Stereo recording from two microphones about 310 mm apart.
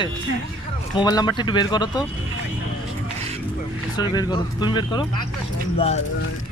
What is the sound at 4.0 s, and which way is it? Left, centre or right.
Speech, centre.